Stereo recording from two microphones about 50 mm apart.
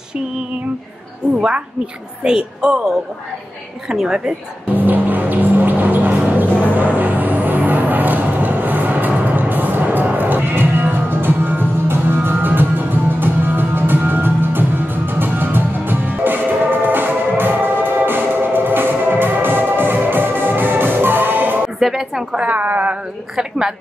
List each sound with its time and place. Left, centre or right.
2.2 s speech: centre
4.3 s music: right
21.7 s a woman's voice: centre
22.5 s speech: right